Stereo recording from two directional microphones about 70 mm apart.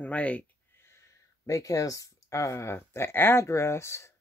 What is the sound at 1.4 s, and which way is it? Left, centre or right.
Speech, left.